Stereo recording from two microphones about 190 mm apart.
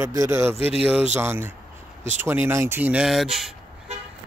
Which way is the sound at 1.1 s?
10° right (ahead or behind).